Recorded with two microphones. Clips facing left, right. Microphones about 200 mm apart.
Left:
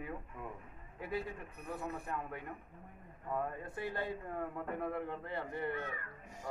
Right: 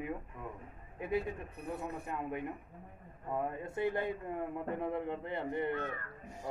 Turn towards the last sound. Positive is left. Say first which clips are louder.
# right 4 dB
turn(degrees=-20)  # may be behind; listen again after turning